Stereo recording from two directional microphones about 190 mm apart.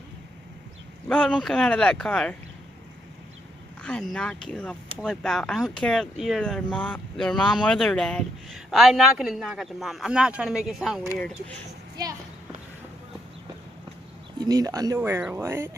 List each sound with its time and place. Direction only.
1.0 s speech: 5° left (ahead or behind)
3.8 s speech: 5° left (ahead or behind)
14.4 s speech: 20° right (ahead or behind)